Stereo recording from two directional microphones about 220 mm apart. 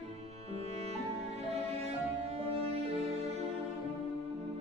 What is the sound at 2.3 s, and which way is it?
Music, 30° right (ahead or behind).